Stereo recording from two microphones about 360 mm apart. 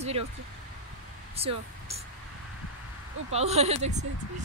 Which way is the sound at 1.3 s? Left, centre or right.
Centre.